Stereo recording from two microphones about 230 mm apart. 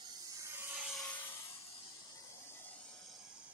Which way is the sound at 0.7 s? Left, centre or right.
Centre.